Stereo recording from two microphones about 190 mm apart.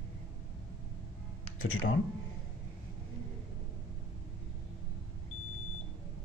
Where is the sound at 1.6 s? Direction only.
90° left.